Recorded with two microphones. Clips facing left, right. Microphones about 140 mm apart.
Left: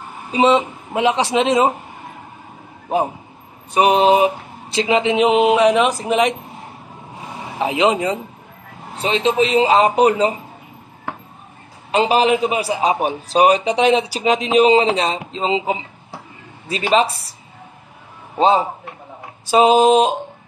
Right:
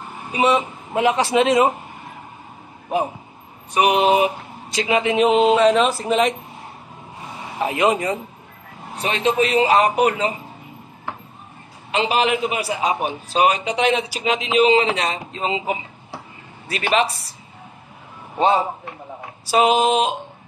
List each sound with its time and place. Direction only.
0.3 s speech: 25° left (ahead or behind)
3.7 s a man's voice: 30° left (ahead or behind); by 6.3 s 15° left (ahead or behind)
7.5 s speech: 20° left (ahead or behind)
11.9 s a man's voice: 35° left (ahead or behind)
19.5 s a man's voice: 35° left (ahead or behind)